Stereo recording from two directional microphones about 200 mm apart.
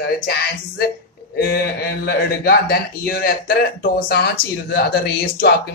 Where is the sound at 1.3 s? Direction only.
50° left (ahead or behind).